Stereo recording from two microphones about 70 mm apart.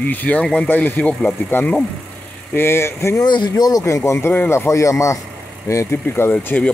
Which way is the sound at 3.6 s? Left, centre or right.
Left.